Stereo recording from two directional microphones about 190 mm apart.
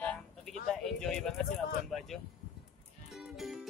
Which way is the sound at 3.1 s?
Centre (ahead or behind).